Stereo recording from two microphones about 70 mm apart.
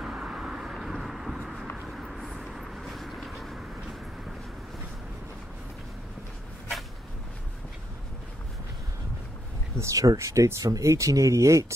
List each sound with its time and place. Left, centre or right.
0.0 s vehicle: centre
1.9 s a sound: centre
2.4 s vehicle: centre
9.8 s speech: right